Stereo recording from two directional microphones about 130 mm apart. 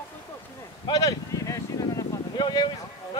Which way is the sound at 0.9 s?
25° left (ahead or behind).